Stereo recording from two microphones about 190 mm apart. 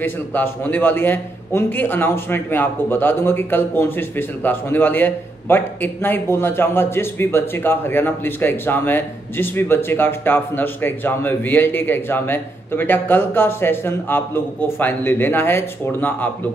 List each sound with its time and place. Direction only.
0.0 s a man's voice: 10° left (ahead or behind)